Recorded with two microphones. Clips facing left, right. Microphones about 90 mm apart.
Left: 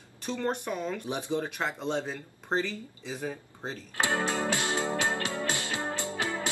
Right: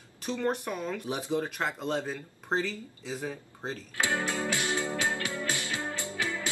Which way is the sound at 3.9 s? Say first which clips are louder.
Left 2 dB; 20° left (ahead or behind).